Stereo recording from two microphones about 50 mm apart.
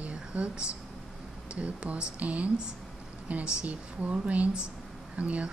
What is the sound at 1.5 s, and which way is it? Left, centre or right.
Speech, right.